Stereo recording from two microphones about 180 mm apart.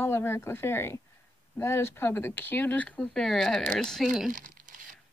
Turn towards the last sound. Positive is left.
turn(degrees=-45)  # may be behind; listen again after turning